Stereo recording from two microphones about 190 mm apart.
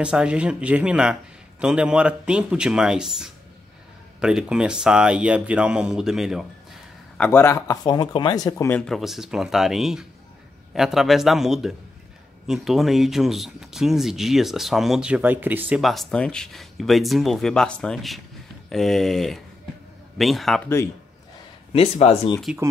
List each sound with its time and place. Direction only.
0.0 s speech: 5° right (ahead or behind)
7.2 s speech: 10° left (ahead or behind)
21.7 s speech: 35° left (ahead or behind)